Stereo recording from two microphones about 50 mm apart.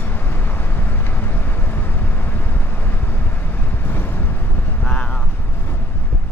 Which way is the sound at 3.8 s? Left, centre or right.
Left.